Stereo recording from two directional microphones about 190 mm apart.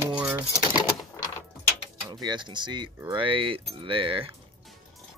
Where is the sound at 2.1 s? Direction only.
20° right (ahead or behind).